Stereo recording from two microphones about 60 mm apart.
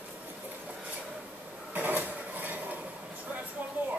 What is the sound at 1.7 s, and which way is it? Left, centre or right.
Dishes, right.